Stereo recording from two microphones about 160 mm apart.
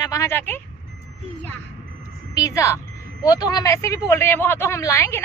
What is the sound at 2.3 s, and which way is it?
A woman's voice, 20° left (ahead or behind).